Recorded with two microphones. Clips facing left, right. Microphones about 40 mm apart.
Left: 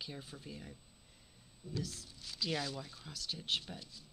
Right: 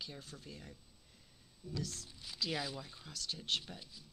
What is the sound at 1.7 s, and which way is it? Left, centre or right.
Speech, centre.